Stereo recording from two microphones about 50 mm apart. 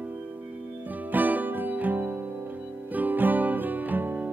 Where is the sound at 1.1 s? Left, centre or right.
Right.